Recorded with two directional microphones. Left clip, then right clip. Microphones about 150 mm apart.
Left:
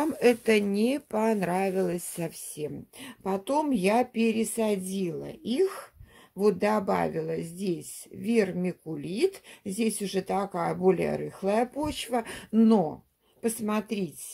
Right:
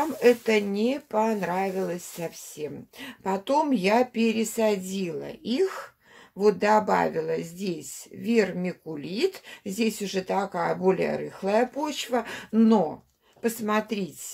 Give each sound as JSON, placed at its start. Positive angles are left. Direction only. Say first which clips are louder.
{"t": 0.2, "sound": "speech", "louder": "right 2 dB", "side_deg": 50}